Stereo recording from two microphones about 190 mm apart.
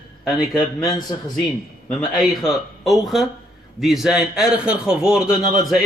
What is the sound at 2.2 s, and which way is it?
A man's voice, centre (ahead or behind).